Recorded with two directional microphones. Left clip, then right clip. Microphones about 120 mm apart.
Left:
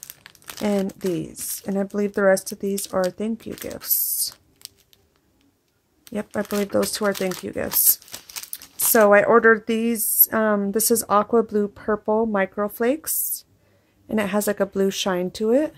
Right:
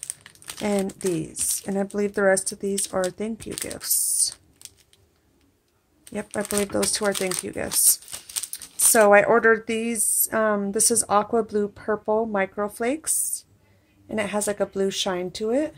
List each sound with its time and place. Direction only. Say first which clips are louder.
0.1 s crumpling: even; 25° left (ahead or behind)
1.6 s speech: left 2 dB; 25° left (ahead or behind)
6.0 s speech: left 2 dB; 25° left (ahead or behind); by 15.7 s 45° left (ahead or behind)